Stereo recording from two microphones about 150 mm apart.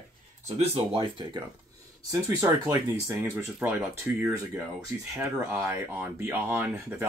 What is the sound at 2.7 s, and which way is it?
Speech, 20° right (ahead or behind).